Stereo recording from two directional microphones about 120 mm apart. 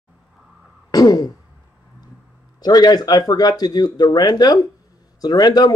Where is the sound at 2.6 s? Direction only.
35° left (ahead or behind).